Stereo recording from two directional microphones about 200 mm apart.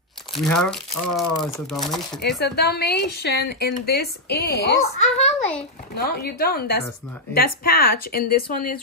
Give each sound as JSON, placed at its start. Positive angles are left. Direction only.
{"t": 0.5, "sound": "speech", "side_deg": 5}
{"t": 2.4, "sound": "a woman's voice", "side_deg": 55}
{"t": 5.0, "sound": "a child's voice", "side_deg": 35}
{"t": 6.0, "sound": "a woman's voice", "side_deg": 50}